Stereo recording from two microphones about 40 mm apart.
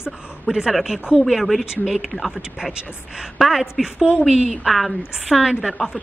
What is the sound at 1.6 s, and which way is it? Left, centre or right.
Speech, centre.